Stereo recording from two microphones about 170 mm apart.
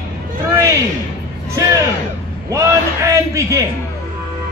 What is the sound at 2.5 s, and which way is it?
Speech, 15° right (ahead or behind).